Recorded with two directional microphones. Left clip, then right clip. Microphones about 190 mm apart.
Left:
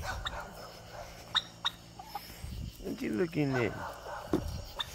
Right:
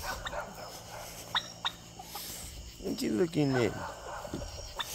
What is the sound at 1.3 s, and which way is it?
Turkey, 55° left (ahead or behind).